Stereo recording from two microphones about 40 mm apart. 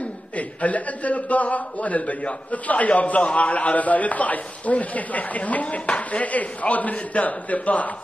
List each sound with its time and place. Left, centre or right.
0.4 s a man's voice: left